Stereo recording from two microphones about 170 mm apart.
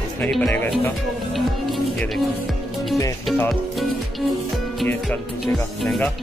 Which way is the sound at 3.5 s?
Centre (ahead or behind).